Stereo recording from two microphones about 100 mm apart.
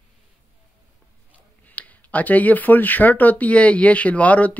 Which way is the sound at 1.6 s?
15° left (ahead or behind).